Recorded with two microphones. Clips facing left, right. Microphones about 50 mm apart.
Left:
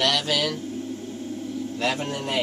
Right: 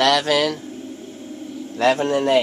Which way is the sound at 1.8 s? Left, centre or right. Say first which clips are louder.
Right 11 dB; right.